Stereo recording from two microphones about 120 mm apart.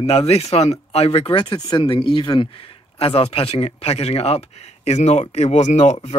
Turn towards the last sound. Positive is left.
turn(degrees=70)  # may be behind; listen again after turning